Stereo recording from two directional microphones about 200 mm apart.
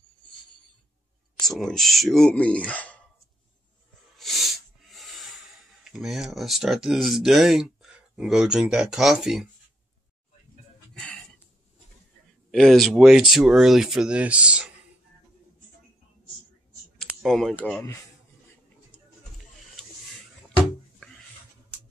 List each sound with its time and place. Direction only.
1.4 s speech: centre (ahead or behind)
4.2 s a sound: centre (ahead or behind)
5.9 s speech: centre (ahead or behind)
11.0 s chicken: 5° left (ahead or behind)
12.4 s speech: centre (ahead or behind)
17.0 s speech: centre (ahead or behind)
21.0 s a sound: 5° left (ahead or behind)